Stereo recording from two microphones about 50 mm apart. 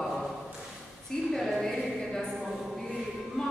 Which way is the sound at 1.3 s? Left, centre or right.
Centre.